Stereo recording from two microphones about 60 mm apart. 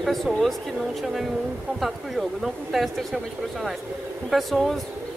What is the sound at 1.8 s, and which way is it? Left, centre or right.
Speech, centre.